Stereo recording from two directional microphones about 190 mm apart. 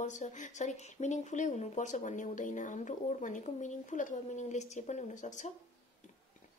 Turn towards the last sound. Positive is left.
turn(degrees=40)  # may be behind; listen again after turning